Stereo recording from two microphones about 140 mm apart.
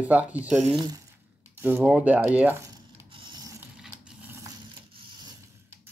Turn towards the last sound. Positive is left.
turn(degrees=-5)  # may be behind; listen again after turning